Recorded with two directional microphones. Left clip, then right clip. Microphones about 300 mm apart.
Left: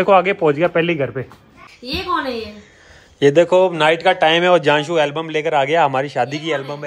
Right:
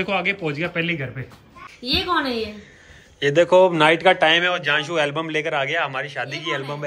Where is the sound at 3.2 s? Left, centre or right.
Centre.